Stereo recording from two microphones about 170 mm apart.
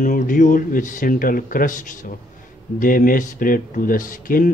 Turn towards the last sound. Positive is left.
turn(degrees=55)  # may be behind; listen again after turning